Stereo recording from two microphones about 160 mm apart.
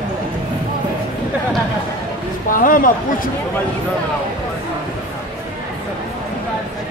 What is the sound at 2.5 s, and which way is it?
Speech, 60° left (ahead or behind).